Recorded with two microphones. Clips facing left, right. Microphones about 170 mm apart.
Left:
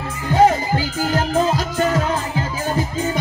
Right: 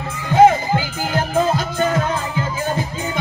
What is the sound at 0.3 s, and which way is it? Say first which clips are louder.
Music: right 3 dB; 40° left (ahead or behind).